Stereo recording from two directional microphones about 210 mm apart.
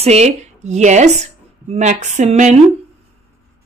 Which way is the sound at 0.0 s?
30° right (ahead or behind).